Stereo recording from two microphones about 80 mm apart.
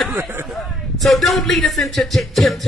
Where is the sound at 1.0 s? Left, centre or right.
Centre.